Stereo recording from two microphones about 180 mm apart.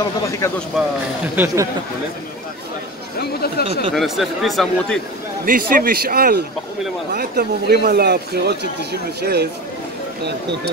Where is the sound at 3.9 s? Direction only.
Centre (ahead or behind).